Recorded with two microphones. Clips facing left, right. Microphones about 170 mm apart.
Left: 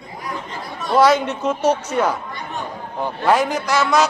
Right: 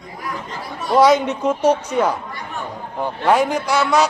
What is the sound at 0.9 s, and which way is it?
A man's voice, 15° right (ahead or behind).